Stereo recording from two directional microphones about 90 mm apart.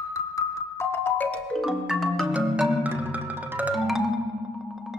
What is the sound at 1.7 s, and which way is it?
Music, centre (ahead or behind).